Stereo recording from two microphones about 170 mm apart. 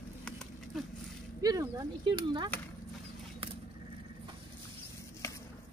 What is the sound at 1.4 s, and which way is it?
Speech, 20° right (ahead or behind).